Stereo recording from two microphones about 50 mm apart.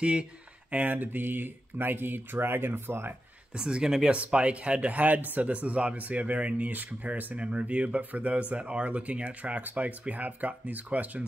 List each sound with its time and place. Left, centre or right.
0.0 s speech: right
0.7 s speech: right
3.5 s speech: centre
4.1 s speech: right